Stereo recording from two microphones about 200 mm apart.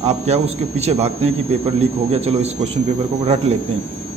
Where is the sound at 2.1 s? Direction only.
30° right (ahead or behind).